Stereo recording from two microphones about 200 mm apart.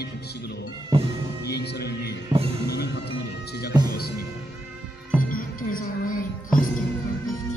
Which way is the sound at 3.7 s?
20° right (ahead or behind).